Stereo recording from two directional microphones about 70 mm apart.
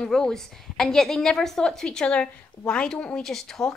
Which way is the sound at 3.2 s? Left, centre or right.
Centre.